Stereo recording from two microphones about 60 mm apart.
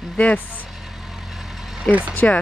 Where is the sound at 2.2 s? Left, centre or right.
Left.